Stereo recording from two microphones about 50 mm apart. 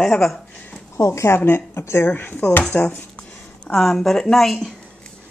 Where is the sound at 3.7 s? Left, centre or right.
Centre.